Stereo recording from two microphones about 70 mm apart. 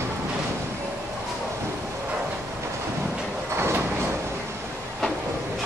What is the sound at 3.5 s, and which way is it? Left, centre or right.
Sliding door, right.